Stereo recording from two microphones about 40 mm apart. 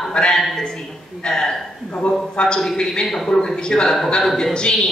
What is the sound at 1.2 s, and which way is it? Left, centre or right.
A man's voice, centre.